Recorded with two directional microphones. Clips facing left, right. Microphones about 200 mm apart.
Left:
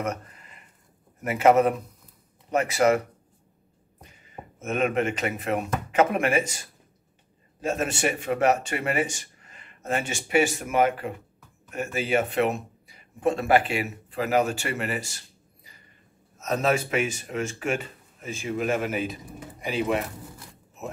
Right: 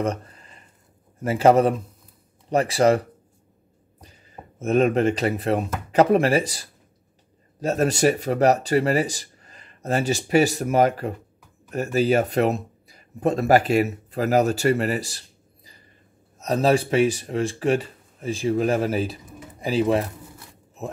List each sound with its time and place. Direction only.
0.0 s a sound: 30° right (ahead or behind)
1.2 s speech: 30° right (ahead or behind)
4.0 s speech: 35° right (ahead or behind)